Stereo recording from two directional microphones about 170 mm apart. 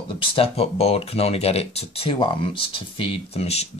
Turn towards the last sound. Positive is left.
turn(degrees=35)  # may be behind; listen again after turning